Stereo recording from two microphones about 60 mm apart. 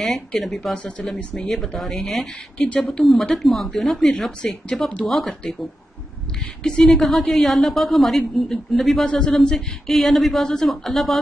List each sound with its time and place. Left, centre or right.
0.0 s a woman's voice: centre
4.4 s speech: centre
5.0 s a woman's voice: centre
6.6 s a woman's voice: centre
9.0 s a woman's voice: centre